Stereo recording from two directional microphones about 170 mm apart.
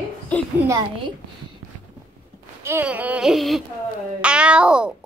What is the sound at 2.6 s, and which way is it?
Speech, 10° right (ahead or behind).